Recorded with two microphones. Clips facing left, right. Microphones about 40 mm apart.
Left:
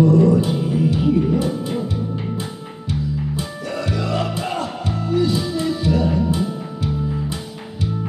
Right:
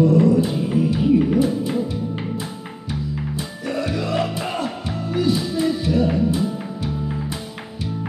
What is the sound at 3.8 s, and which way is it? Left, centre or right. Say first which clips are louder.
Music: left 1 dB; centre.